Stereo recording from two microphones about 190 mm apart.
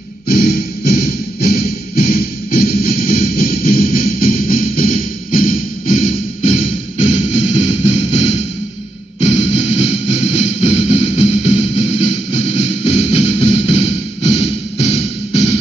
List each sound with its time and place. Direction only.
0.3 s music: 55° left (ahead or behind); by 8.2 s 35° left (ahead or behind)
9.2 s music: 35° left (ahead or behind)